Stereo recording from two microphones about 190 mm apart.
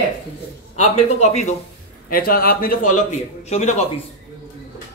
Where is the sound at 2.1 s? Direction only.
50° left (ahead or behind).